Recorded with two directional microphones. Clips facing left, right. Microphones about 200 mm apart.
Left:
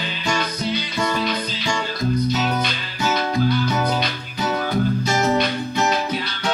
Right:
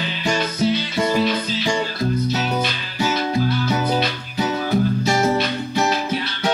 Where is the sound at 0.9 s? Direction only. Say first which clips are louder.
Right 4 dB; 25° right (ahead or behind).